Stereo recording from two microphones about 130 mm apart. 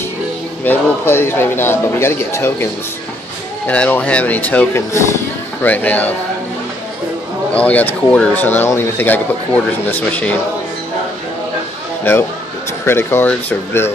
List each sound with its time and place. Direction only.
0.7 s speech: 15° left (ahead or behind)
7.5 s speech: 10° left (ahead or behind)
12.0 s a man's voice: 15° left (ahead or behind)